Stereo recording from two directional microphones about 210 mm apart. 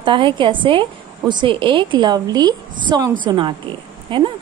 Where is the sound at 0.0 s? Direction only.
20° right (ahead or behind).